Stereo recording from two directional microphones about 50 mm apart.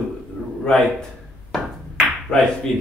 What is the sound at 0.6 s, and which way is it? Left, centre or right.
Speech, centre.